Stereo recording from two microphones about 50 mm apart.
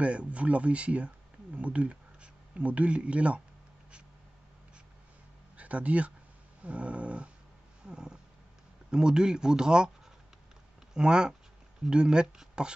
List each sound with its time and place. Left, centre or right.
0.0 s speech: right
5.6 s speech: right
6.6 s dog: right
7.8 s a sound: centre
8.9 s speech: centre
11.0 s speech: centre